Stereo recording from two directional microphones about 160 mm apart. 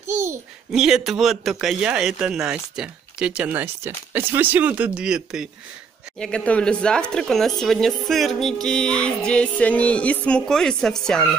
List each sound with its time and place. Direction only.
0.0 s babbling: 15° right (ahead or behind)
0.7 s speech: 5° right (ahead or behind)